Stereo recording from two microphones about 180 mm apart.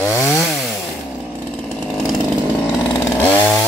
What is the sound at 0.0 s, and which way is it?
Chainsaw, 15° left (ahead or behind).